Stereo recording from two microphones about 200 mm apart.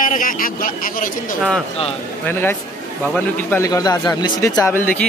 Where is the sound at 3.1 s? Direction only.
10° left (ahead or behind).